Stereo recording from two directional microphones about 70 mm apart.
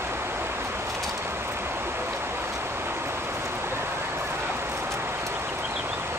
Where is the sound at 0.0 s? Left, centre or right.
Right.